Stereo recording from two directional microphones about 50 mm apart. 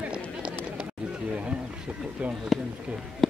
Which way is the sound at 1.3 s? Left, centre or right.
Right.